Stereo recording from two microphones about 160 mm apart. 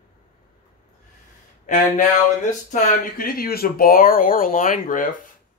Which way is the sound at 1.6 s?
50° left (ahead or behind).